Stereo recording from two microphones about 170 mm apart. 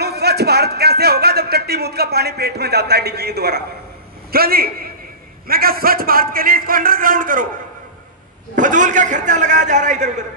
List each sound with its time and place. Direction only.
0.0 s a man's voice: 70° right (ahead or behind); by 7.4 s 55° right (ahead or behind)
8.5 s a man's voice: 50° right (ahead or behind)